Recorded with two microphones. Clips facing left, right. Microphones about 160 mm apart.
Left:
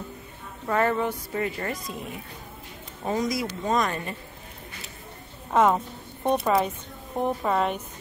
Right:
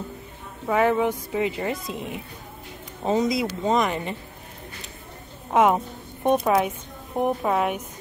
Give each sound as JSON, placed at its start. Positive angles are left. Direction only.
{"t": 0.7, "sound": "a woman's voice", "side_deg": -10}
{"t": 5.5, "sound": "a woman's voice", "side_deg": -15}
{"t": 6.3, "sound": "a woman's voice", "side_deg": 0}